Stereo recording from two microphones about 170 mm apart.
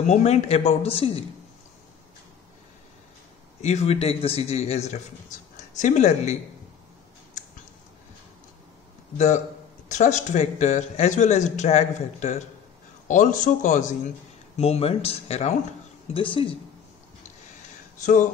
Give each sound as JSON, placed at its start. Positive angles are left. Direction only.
{"t": 0.0, "sound": "speech", "side_deg": 45}
{"t": 3.6, "sound": "speech", "side_deg": 40}
{"t": 9.8, "sound": "speech", "side_deg": 45}
{"t": 14.6, "sound": "speech", "side_deg": 35}
{"t": 17.9, "sound": "a sound", "side_deg": 50}